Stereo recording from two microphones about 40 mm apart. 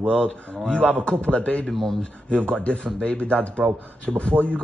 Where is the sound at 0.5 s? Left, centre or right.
Left.